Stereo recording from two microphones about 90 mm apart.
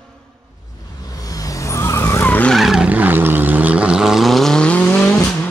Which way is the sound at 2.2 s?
20° left (ahead or behind).